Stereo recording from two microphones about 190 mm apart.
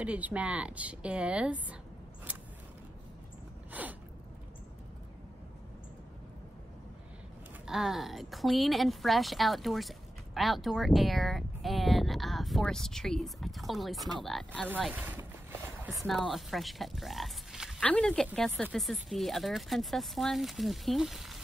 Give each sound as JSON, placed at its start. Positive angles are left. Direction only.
{"t": 0.0, "sound": "speech", "side_deg": -5}
{"t": 2.3, "sound": "vehicle", "side_deg": -5}
{"t": 3.8, "sound": "a sound", "side_deg": -10}
{"t": 7.6, "sound": "a woman's voice", "side_deg": -5}
{"t": 14.8, "sound": "a woman's voice", "side_deg": -10}